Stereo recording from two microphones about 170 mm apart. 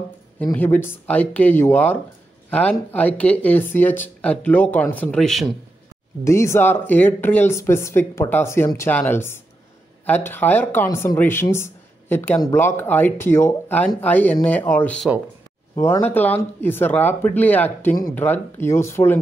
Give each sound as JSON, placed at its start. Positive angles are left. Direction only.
{"t": 0.4, "sound": "speech", "side_deg": 10}
{"t": 6.2, "sound": "speech", "side_deg": 15}